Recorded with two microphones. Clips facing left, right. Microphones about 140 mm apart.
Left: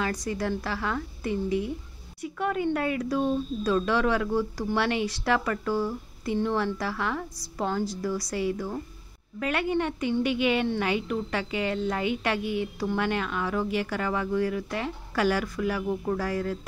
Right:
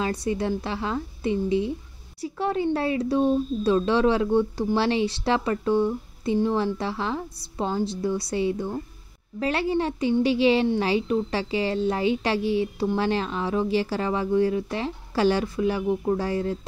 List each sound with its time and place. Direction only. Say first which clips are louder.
0.0 s a woman's voice: right 3 dB; 25° right (ahead or behind)